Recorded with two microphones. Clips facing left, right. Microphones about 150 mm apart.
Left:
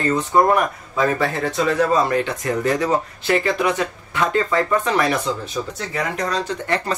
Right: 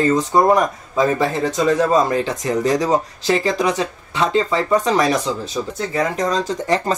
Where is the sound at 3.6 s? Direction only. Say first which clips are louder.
Right 1 dB; 35° right (ahead or behind).